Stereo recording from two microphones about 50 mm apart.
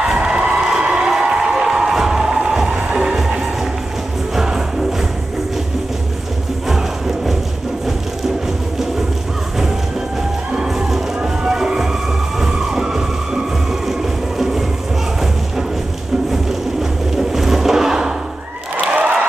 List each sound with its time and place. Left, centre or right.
0.0 s crowd: centre
2.7 s music: centre
4.4 s music: centre
6.7 s music: centre
10.5 s music: centre
11.4 s a sound: centre
12.4 s emergency vehicle: centre
17.3 s a sound: centre
18.8 s a sound: right